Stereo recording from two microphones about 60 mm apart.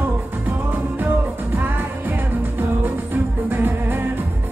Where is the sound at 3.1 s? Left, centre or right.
Right.